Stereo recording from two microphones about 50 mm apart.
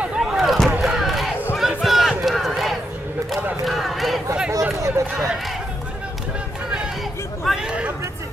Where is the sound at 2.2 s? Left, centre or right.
Centre.